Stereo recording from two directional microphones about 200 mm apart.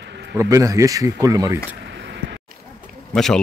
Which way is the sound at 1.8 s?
60° right (ahead or behind).